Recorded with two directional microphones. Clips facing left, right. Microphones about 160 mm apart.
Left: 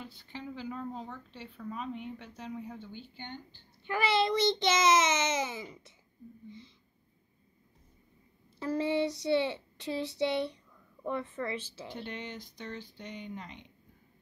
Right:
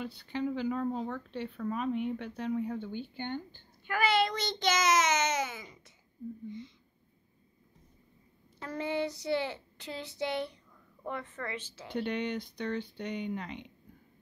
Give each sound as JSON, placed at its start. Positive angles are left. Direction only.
{"t": 0.0, "sound": "speech", "side_deg": -70}
{"t": 3.8, "sound": "a child's voice", "side_deg": 20}
{"t": 8.5, "sound": "a child's voice", "side_deg": 25}
{"t": 11.9, "sound": "speech", "side_deg": -65}